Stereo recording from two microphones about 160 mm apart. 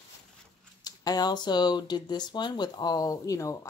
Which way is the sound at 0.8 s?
25° left (ahead or behind).